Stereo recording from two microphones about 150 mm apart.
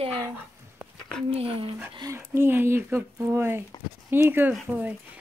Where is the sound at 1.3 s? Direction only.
40° right (ahead or behind).